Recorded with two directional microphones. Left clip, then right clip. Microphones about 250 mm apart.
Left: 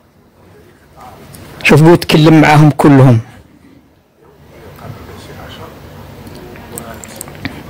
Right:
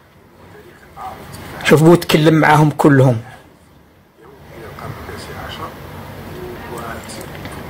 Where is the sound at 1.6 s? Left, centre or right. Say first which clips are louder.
Left 3 dB; left.